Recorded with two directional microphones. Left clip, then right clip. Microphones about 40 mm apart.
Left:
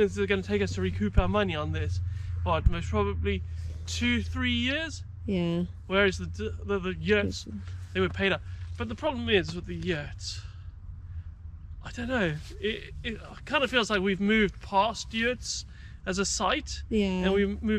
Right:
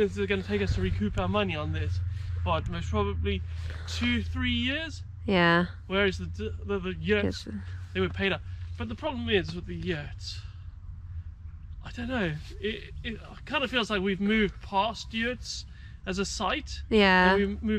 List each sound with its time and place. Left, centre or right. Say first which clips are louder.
0.0 s a man's voice: left 1 dB; left
11.8 s speech: left 3 dB; left